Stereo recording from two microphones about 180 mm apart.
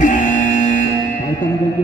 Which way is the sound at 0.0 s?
45° left (ahead or behind).